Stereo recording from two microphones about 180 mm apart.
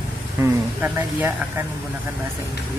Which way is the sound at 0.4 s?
10° right (ahead or behind).